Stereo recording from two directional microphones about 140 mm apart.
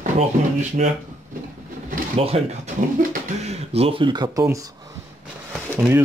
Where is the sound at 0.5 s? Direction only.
55° right (ahead or behind).